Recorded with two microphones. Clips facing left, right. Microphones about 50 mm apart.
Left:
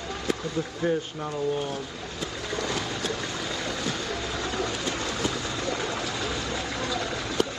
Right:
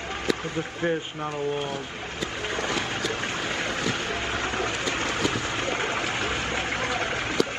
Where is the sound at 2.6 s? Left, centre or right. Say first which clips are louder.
Right 2 dB; right.